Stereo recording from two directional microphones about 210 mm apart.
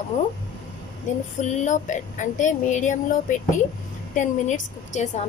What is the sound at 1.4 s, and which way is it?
Speech, 35° left (ahead or behind).